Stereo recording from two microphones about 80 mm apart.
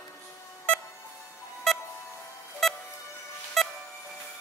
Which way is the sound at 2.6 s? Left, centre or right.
Centre.